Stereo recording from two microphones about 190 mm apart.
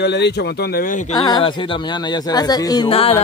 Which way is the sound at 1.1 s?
20° left (ahead or behind).